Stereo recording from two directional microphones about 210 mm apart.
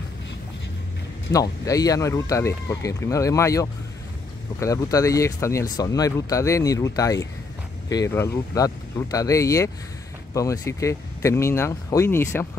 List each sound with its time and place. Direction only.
1.3 s speech: 15° left (ahead or behind)